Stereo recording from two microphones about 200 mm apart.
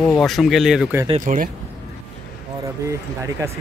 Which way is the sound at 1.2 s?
40° right (ahead or behind).